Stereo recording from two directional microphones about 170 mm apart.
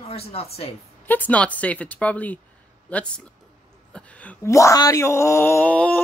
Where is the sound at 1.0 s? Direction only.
10° left (ahead or behind).